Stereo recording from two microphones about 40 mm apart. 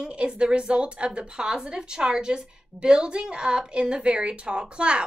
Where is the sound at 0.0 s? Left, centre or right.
Right.